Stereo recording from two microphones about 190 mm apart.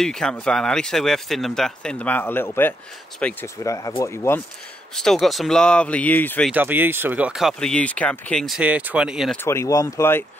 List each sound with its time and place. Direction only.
0.0 s speech: 5° left (ahead or behind)
3.6 s speech: 15° left (ahead or behind)
4.9 s speech: centre (ahead or behind)
6.5 s speech: 10° right (ahead or behind)
9.4 s speech: 15° left (ahead or behind)